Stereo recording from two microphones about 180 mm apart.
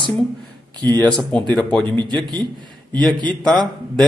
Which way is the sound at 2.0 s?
25° right (ahead or behind).